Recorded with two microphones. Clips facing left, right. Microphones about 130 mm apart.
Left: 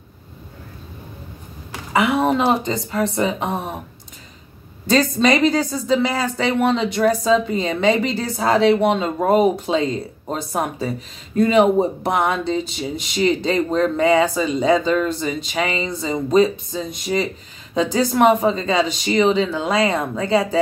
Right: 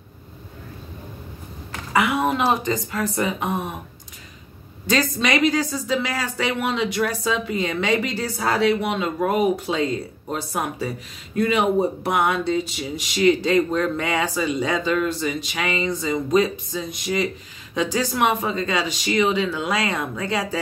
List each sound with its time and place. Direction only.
2.0 s speech: 30° left (ahead or behind)
4.9 s a woman's voice: 30° left (ahead or behind)